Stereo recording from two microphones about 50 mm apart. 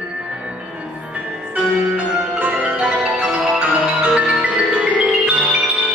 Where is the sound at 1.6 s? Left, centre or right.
Right.